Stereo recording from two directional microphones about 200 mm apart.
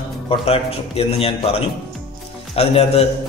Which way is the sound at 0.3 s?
30° left (ahead or behind).